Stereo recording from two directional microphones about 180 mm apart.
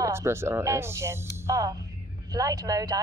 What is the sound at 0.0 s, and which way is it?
A woman's voice, 15° right (ahead or behind).